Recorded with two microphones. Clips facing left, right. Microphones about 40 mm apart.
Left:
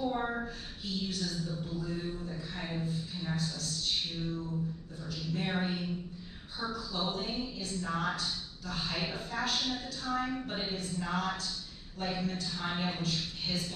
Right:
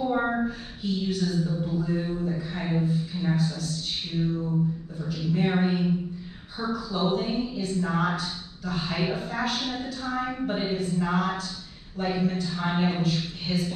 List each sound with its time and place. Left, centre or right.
0.0 s a sound: right
0.5 s a woman's voice: centre
4.1 s a woman's voice: right
4.9 s speech: centre
5.2 s a woman's voice: right
7.0 s a woman's voice: right